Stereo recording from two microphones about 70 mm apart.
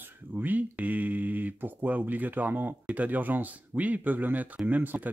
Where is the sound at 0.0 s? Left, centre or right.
Right.